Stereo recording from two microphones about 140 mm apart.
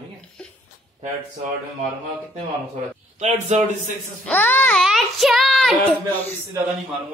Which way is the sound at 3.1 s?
50° right (ahead or behind).